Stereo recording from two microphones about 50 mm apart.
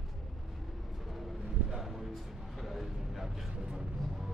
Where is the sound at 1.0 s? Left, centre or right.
Centre.